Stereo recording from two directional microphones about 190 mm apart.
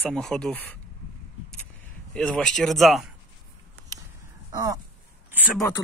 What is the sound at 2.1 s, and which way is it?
Speech, 5° left (ahead or behind).